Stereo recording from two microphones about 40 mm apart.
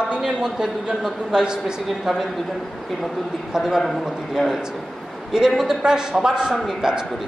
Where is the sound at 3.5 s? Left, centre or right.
Centre.